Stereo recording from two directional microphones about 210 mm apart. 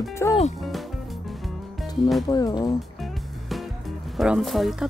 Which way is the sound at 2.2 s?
20° left (ahead or behind).